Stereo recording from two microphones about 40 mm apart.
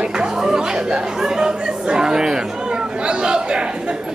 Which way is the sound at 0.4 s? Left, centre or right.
Centre.